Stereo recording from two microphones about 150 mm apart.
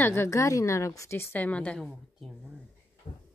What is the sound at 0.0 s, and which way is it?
Speech, 15° left (ahead or behind).